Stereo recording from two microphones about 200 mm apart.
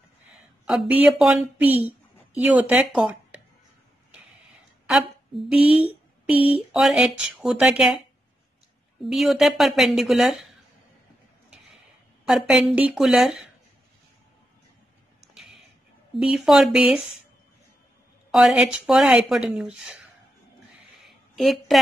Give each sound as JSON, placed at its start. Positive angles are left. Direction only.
{"t": 0.7, "sound": "speech", "side_deg": -5}
{"t": 4.8, "sound": "a sound", "side_deg": 0}
{"t": 5.8, "sound": "speech", "side_deg": -5}
{"t": 9.0, "sound": "speech", "side_deg": 0}
{"t": 12.3, "sound": "speech", "side_deg": 0}
{"t": 16.2, "sound": "speech", "side_deg": 0}
{"t": 18.3, "sound": "speech", "side_deg": -5}
{"t": 21.4, "sound": "speech", "side_deg": 0}